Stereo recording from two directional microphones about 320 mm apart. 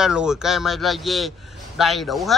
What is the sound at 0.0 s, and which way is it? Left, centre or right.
Speech, centre.